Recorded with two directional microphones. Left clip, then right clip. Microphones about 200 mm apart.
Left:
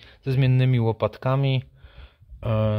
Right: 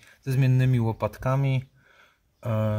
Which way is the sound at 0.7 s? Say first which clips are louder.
Left 4 dB; 25° left (ahead or behind).